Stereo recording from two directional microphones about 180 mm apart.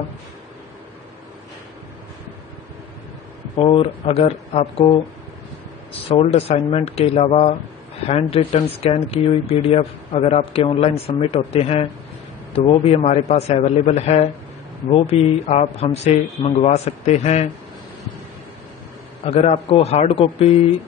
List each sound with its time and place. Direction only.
3.5 s speech: 30° left (ahead or behind)
6.0 s speech: 35° left (ahead or behind)
19.2 s speech: 35° left (ahead or behind)